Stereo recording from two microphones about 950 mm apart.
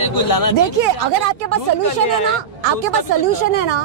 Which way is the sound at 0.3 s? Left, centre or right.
Centre.